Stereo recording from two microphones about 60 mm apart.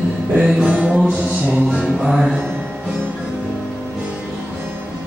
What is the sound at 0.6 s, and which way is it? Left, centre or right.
Music, right.